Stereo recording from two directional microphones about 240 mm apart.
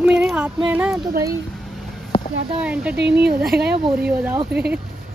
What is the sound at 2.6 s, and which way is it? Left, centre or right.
Speech, centre.